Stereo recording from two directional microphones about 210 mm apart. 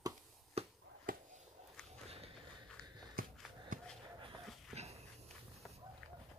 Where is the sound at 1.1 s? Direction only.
40° right (ahead or behind).